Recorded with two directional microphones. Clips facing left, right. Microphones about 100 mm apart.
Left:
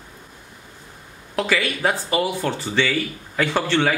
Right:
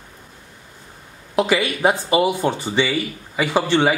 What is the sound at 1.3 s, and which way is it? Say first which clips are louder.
Speech: right 4 dB; 15° right (ahead or behind).